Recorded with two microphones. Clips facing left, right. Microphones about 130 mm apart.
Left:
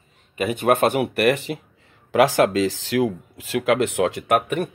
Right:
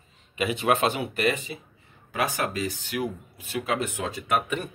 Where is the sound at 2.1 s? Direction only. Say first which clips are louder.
Left 11 dB; 90° left; by 4.7 s 65° left (ahead or behind).